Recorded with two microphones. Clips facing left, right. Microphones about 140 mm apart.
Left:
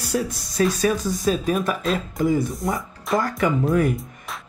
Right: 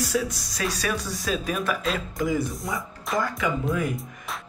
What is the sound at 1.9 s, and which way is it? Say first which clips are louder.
Speech: left 5 dB; centre (ahead or behind).